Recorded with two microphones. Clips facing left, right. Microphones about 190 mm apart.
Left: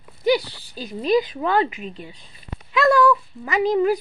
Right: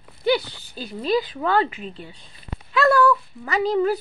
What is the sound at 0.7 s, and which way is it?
Speech, 15° left (ahead or behind).